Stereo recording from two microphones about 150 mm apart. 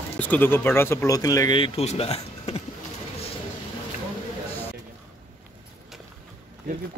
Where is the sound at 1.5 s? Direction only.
40° left (ahead or behind).